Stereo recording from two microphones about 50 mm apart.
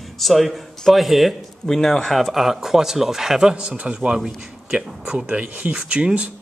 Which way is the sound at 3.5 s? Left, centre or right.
Right.